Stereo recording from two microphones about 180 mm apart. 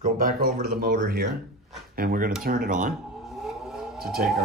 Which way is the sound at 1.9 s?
50° right (ahead or behind).